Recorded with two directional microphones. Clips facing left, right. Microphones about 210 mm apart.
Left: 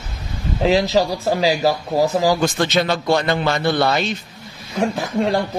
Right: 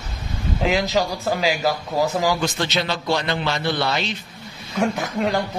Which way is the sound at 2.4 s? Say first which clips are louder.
Left 5 dB; 50° left (ahead or behind).